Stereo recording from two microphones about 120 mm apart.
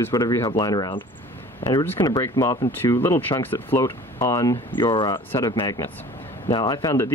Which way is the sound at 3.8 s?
25° left (ahead or behind).